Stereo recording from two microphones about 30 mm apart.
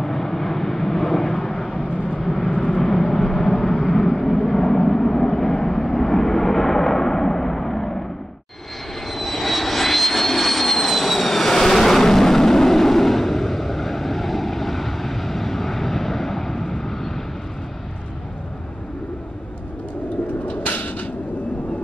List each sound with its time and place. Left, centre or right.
0.0 s vehicle: centre
1.8 s vehicle: left
2.1 s vehicle: centre
9.1 s vehicle: centre
20.6 s a sound: left